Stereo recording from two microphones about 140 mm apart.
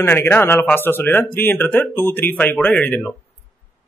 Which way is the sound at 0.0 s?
15° left (ahead or behind).